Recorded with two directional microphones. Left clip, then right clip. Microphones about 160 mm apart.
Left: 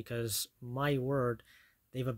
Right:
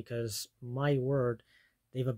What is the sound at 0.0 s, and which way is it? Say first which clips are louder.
Speech: even; 25° left (ahead or behind).